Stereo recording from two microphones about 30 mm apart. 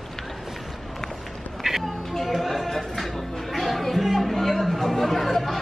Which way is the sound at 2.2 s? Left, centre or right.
Centre.